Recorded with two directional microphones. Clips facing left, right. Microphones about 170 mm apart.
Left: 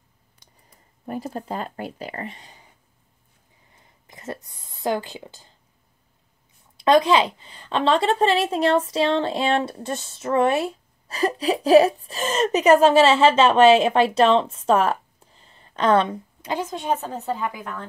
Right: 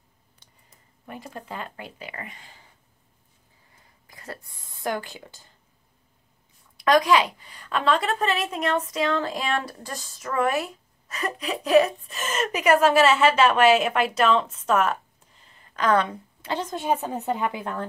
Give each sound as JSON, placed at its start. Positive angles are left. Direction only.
{"t": 1.0, "sound": "speech", "side_deg": 40}
{"t": 2.3, "sound": "speech", "side_deg": 20}
{"t": 3.7, "sound": "a sound", "side_deg": 20}
{"t": 6.8, "sound": "a woman's voice", "side_deg": 25}
{"t": 16.7, "sound": "speech", "side_deg": -10}